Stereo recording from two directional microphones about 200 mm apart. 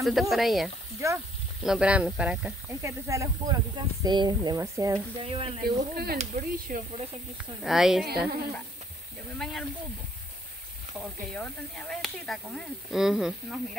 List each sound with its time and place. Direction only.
0.0 s speech: centre (ahead or behind)
1.0 s speech: 15° right (ahead or behind)
1.6 s speech: 5° right (ahead or behind)
5.2 s speech: 30° right (ahead or behind)
5.6 s speech: 50° right (ahead or behind)
7.6 s speech: centre (ahead or behind)
9.4 s speech: centre (ahead or behind)
11.3 s speech: 5° left (ahead or behind)